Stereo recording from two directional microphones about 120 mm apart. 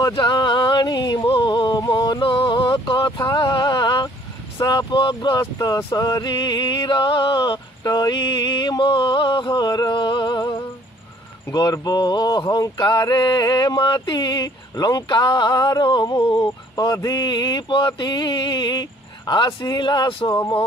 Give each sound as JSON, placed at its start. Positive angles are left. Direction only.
{"t": 0.1, "sound": "music", "side_deg": 40}
{"t": 4.6, "sound": "speech", "side_deg": 40}
{"t": 20.3, "sound": "speech", "side_deg": 20}